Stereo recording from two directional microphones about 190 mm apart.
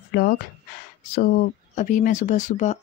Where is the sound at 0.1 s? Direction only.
50° left (ahead or behind).